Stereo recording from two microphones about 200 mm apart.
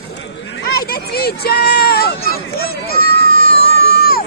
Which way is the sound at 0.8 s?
50° left (ahead or behind).